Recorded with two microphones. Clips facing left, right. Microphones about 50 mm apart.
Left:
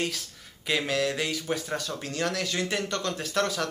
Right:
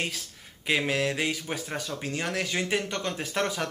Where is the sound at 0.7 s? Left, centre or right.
Centre.